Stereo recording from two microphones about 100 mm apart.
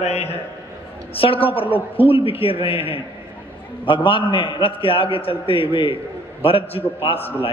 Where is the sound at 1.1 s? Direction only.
65° left (ahead or behind).